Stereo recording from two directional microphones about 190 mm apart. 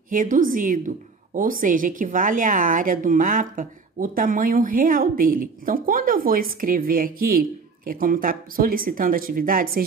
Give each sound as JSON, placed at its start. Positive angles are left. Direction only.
{"t": 0.1, "sound": "a woman's voice", "side_deg": -45}